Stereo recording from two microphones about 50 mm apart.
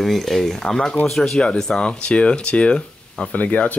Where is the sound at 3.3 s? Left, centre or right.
Left.